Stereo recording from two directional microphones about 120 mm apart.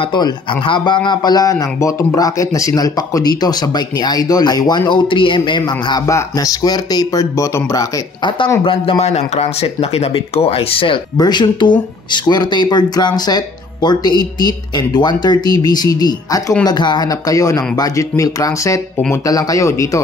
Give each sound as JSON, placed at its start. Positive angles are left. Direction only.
{"t": 0.0, "sound": "speech", "side_deg": 40}
{"t": 8.2, "sound": "speech", "side_deg": 40}
{"t": 8.6, "sound": "speech", "side_deg": 55}
{"t": 11.1, "sound": "speech", "side_deg": 35}